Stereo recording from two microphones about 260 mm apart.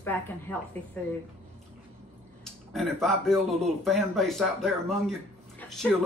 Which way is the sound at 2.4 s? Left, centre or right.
Centre.